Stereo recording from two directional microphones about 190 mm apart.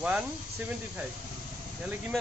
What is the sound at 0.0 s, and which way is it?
Speech, 10° right (ahead or behind).